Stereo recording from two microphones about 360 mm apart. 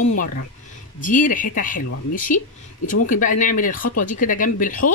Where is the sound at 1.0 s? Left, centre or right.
Left.